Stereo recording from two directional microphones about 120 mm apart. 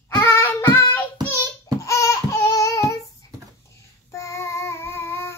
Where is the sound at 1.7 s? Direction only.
25° left (ahead or behind).